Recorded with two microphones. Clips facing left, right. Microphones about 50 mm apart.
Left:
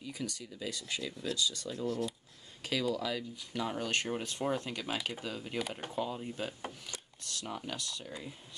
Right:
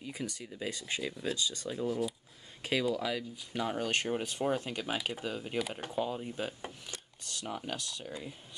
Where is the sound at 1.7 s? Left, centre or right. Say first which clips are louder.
Right 3 dB; centre.